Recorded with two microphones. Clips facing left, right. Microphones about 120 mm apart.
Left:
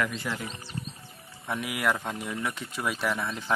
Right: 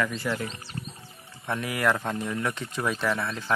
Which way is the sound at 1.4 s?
10° left (ahead or behind).